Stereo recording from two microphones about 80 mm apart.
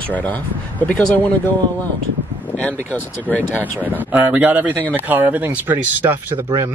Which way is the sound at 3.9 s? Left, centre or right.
Right.